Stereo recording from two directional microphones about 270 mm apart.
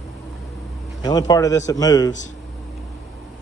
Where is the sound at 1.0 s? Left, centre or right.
Centre.